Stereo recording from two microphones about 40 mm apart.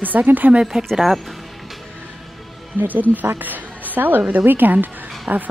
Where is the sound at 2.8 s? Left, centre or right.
Right.